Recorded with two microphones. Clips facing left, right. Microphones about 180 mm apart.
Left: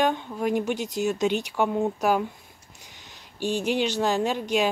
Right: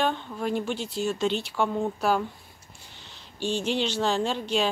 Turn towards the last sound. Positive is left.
turn(degrees=10)  # may be behind; listen again after turning